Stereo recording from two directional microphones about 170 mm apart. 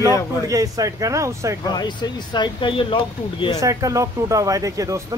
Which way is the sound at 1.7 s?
25° left (ahead or behind).